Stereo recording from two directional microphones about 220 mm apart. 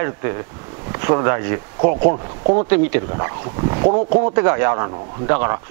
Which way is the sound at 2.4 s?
30° right (ahead or behind).